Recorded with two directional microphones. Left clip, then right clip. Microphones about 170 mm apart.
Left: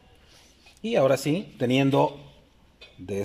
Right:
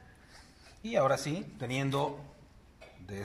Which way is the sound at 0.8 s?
40° left (ahead or behind).